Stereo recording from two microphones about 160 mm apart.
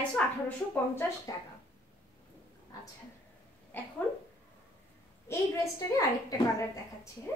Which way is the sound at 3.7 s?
10° left (ahead or behind).